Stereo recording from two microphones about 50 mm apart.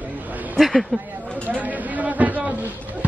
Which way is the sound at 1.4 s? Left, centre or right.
Right.